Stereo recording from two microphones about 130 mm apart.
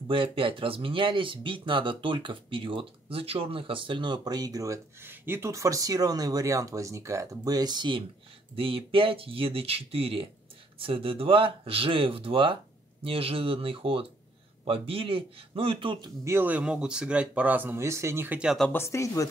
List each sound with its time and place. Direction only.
0.1 s speech: 40° right (ahead or behind)
16.3 s speech: 15° right (ahead or behind)
18.7 s speech: 20° left (ahead or behind)